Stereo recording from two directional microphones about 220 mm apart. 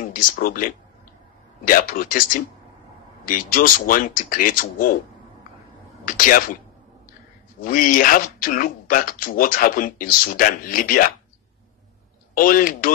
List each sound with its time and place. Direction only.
0.0 s speech: 40° left (ahead or behind)
6.0 s speech: 40° left (ahead or behind)
7.6 s speech: 40° left (ahead or behind)
12.4 s speech: 40° left (ahead or behind)